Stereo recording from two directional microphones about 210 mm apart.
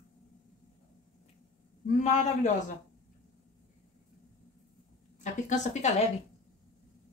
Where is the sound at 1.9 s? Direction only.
35° left (ahead or behind).